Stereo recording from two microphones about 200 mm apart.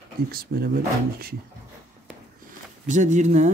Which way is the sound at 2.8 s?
35° right (ahead or behind).